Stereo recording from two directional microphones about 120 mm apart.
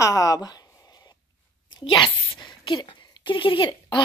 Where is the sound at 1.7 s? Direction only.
35° left (ahead or behind).